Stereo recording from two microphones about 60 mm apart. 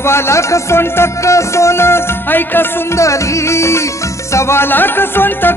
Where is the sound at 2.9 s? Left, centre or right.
Left.